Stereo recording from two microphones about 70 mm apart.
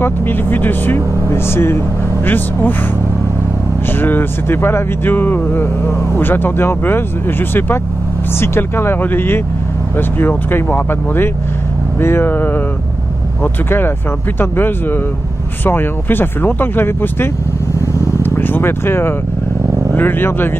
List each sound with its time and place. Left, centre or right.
0.0 s speech: left
3.9 s speech: left
18.2 s vehicle: left
19.9 s speech: left